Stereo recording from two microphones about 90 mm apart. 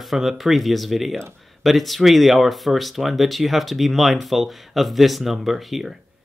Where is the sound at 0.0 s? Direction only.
Centre (ahead or behind).